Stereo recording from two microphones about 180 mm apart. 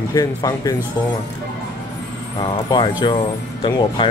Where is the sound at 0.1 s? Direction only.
20° left (ahead or behind).